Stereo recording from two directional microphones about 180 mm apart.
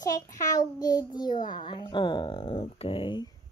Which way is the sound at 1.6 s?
25° left (ahead or behind).